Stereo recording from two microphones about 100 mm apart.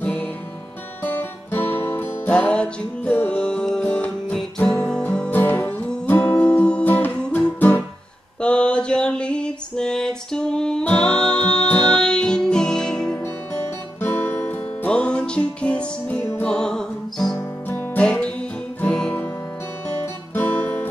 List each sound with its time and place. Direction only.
0.0 s music: 10° left (ahead or behind)
8.4 s a sound: 10° left (ahead or behind)
13.2 s music: 25° left (ahead or behind); by 17.4 s 5° left (ahead or behind)
17.4 s music: 20° left (ahead or behind)
20.3 s music: 20° left (ahead or behind)